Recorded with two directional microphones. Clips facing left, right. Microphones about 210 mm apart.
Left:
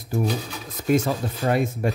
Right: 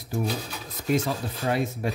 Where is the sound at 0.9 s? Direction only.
45° left (ahead or behind).